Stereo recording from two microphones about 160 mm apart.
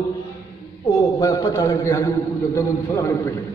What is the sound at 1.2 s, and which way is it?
A man's voice, 20° left (ahead or behind).